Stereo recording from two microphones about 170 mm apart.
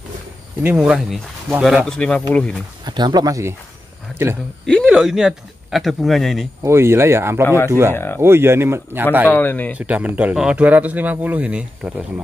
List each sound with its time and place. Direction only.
0.6 s speech: 5° right (ahead or behind)
2.8 s speech: 25° right (ahead or behind)
4.8 s speech: 5° right (ahead or behind)
6.6 s speech: 15° right (ahead or behind)
7.4 s speech: 15° left (ahead or behind)
8.2 s speech: 15° right (ahead or behind)
9.3 s speech: 10° left (ahead or behind)
9.8 s speech: 10° right (ahead or behind)